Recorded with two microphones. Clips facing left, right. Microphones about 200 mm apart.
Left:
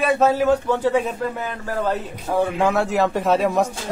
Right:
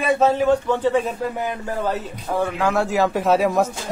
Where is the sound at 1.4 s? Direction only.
15° right (ahead or behind).